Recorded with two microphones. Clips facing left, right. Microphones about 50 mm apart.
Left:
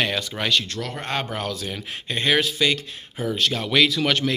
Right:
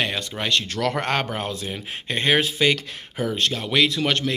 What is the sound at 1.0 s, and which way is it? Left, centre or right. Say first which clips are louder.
Speech: right 3 dB; right.